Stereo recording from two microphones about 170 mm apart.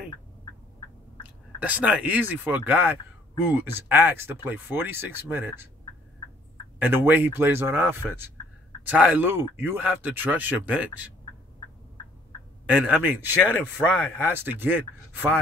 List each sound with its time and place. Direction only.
1.6 s speech: 10° right (ahead or behind)
6.8 s speech: 10° right (ahead or behind)
12.7 s speech: 10° right (ahead or behind)